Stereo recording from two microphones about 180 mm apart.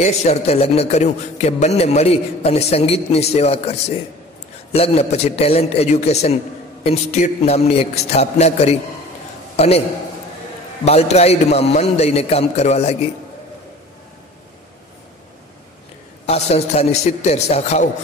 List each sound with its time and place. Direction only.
0.0 s a man's voice: 40° left (ahead or behind)
4.7 s a man's voice: 35° left (ahead or behind)
10.9 s a man's voice: 35° left (ahead or behind)
16.3 s a man's voice: 35° left (ahead or behind)